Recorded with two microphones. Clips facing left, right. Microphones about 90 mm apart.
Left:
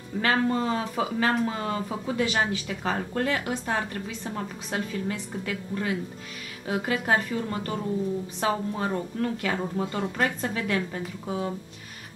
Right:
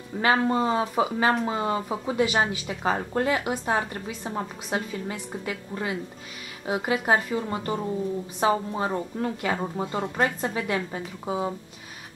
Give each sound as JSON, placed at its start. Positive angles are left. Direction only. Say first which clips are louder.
{"t": 0.2, "sound": "speech", "louder": "right 2 dB", "side_deg": -15}